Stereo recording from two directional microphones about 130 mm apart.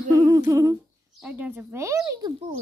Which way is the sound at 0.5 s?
20° right (ahead or behind).